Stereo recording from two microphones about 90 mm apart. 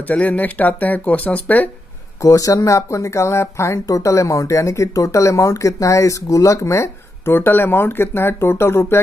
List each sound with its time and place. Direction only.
0.0 s speech: 15° left (ahead or behind)
2.2 s speech: 40° left (ahead or behind)